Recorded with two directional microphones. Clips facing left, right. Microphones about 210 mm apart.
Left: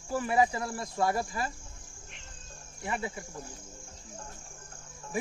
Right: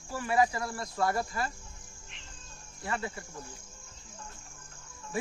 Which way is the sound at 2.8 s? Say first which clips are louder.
Left 1 dB; 15° left (ahead or behind).